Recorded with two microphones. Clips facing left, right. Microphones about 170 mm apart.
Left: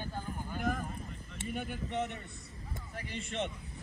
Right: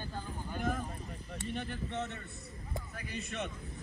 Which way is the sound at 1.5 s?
10° left (ahead or behind).